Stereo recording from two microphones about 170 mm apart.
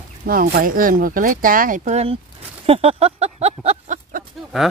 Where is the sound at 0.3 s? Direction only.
60° right (ahead or behind); by 2.1 s 40° right (ahead or behind).